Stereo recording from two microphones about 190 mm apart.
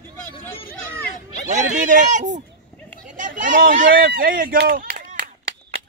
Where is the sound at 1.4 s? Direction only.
40° right (ahead or behind).